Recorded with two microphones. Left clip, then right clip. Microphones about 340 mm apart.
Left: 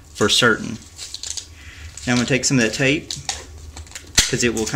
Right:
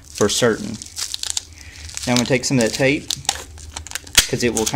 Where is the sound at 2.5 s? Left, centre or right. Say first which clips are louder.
Right 1 dB; centre.